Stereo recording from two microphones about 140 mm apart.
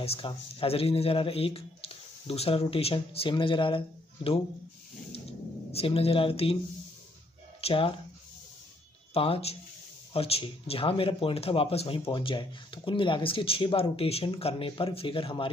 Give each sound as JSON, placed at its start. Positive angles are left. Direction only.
{"t": 0.0, "sound": "speech", "side_deg": 45}
{"t": 5.7, "sound": "speech", "side_deg": 45}
{"t": 7.6, "sound": "speech", "side_deg": 40}
{"t": 9.1, "sound": "speech", "side_deg": 45}